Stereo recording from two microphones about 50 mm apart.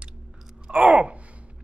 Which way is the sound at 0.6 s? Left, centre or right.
Centre.